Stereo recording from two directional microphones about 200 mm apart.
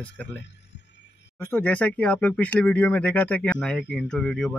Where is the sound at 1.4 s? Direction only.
10° left (ahead or behind).